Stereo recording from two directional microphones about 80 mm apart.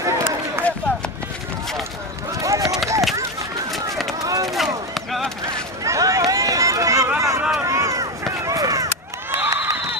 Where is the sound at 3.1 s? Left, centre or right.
Right.